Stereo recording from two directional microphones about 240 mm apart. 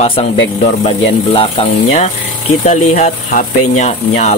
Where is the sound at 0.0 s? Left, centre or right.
Left.